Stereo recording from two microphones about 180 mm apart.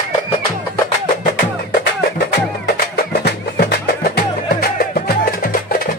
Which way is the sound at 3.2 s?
60° left (ahead or behind).